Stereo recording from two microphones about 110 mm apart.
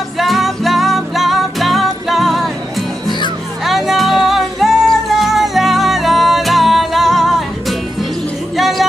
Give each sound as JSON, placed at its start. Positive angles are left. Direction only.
{"t": 0.2, "sound": "music", "side_deg": 0}
{"t": 3.6, "sound": "music", "side_deg": 0}
{"t": 8.5, "sound": "music", "side_deg": 0}